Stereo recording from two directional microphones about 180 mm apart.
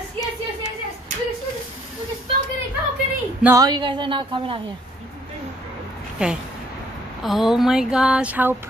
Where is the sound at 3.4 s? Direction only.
15° right (ahead or behind).